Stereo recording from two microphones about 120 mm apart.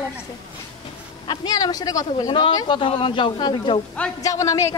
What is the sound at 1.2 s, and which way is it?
Speech, 35° left (ahead or behind).